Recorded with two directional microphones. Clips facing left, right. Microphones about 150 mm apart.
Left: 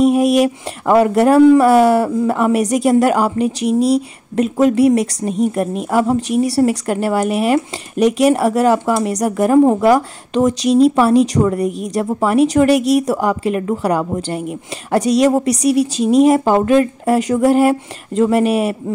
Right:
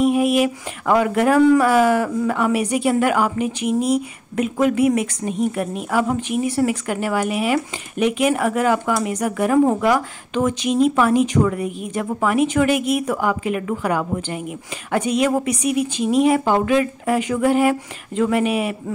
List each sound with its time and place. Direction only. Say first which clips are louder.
0.0 s speech: left 4 dB; 40° left (ahead or behind)